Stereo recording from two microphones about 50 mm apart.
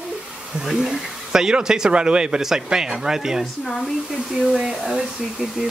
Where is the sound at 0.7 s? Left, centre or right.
Centre.